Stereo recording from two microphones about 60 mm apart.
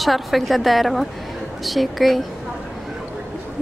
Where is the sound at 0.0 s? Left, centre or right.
Centre.